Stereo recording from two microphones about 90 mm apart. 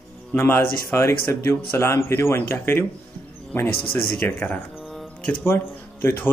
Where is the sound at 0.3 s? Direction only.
25° left (ahead or behind).